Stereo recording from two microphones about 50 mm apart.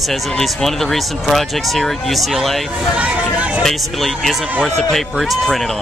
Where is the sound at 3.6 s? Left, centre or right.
Centre.